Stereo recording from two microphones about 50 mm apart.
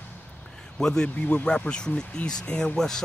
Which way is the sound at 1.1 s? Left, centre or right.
Left.